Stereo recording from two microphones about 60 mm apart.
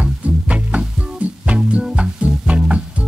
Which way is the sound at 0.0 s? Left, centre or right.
Right.